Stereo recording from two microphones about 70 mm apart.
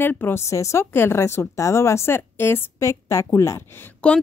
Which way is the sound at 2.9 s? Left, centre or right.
Left.